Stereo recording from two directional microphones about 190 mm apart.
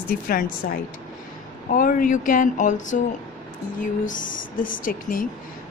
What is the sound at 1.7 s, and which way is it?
Speech, 45° left (ahead or behind).